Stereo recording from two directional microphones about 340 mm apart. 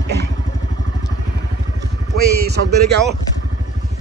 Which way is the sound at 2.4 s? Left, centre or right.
Right.